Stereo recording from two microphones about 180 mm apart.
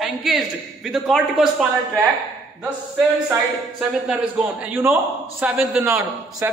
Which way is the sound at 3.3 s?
5° right (ahead or behind).